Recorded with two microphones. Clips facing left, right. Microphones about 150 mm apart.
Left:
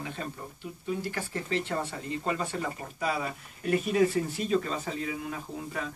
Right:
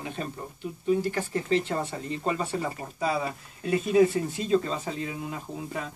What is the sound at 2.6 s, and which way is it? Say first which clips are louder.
Speech: right 3 dB; 5° right (ahead or behind).